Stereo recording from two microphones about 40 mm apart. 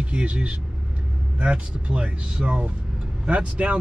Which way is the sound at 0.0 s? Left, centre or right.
Right.